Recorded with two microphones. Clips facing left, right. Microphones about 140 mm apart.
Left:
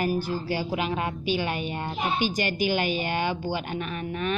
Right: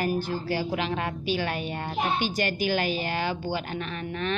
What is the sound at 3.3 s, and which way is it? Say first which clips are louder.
A woman's voice: left 1 dB; 10° left (ahead or behind).